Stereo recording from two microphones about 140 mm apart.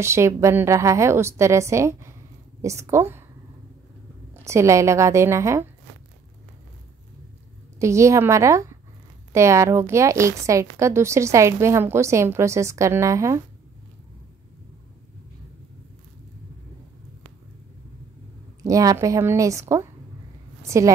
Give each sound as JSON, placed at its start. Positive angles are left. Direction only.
{"t": 0.0, "sound": "a woman's voice", "side_deg": -20}
{"t": 4.3, "sound": "a woman's voice", "side_deg": -20}
{"t": 7.8, "sound": "a woman's voice", "side_deg": -20}
{"t": 18.6, "sound": "a woman's voice", "side_deg": -25}